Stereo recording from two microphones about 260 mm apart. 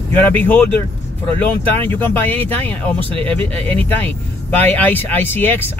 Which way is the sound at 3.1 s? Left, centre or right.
Right.